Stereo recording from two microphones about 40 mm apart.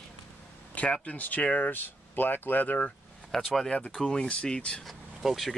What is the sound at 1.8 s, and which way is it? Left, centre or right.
Speech, left.